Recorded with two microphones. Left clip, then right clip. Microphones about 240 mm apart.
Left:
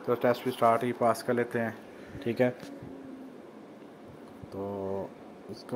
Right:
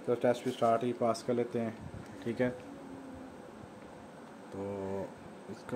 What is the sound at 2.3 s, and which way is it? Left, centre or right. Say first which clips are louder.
Speech: left 6 dB; centre.